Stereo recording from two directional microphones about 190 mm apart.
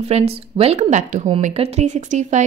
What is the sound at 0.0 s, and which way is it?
A woman's voice, 35° right (ahead or behind).